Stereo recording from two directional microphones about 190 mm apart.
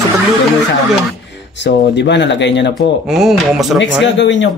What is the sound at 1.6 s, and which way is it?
Speech, 65° left (ahead or behind).